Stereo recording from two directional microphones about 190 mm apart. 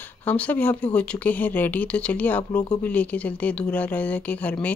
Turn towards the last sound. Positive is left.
turn(degrees=10)  # may be behind; listen again after turning